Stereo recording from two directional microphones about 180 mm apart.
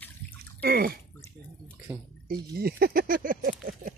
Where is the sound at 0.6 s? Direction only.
55° right (ahead or behind).